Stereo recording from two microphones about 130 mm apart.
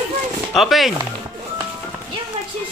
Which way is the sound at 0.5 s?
Centre (ahead or behind).